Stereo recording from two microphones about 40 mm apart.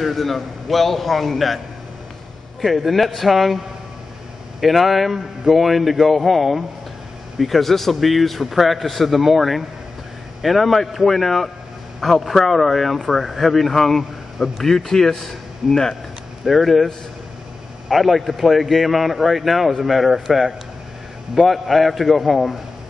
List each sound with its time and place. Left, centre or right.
0.0 s a man's voice: centre
2.6 s a man's voice: centre
16.4 s a man's voice: centre